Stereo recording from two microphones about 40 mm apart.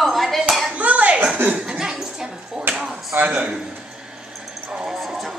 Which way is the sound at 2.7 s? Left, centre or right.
Centre.